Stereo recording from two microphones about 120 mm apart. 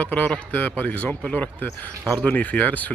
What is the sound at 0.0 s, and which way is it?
A man's voice, 15° left (ahead or behind).